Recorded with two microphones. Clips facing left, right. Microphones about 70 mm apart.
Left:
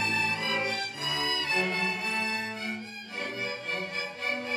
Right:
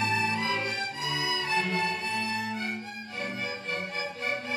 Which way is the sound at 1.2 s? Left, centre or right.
Centre.